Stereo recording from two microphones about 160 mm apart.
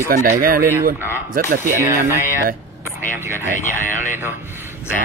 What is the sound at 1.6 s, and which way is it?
Speech, 15° right (ahead or behind).